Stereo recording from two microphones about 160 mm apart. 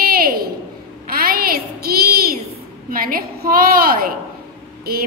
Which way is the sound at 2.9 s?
65° right (ahead or behind).